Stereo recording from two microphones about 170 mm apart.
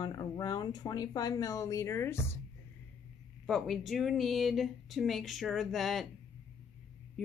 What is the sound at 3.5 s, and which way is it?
Speech, centre (ahead or behind).